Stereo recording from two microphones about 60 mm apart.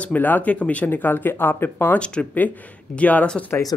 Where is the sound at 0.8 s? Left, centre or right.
Left.